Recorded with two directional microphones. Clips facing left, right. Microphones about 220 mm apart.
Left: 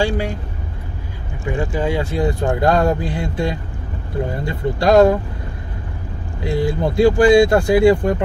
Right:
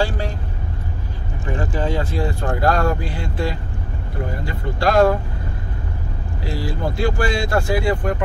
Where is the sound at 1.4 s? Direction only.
15° left (ahead or behind).